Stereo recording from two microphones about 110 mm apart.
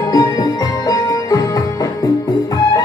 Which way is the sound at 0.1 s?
35° left (ahead or behind).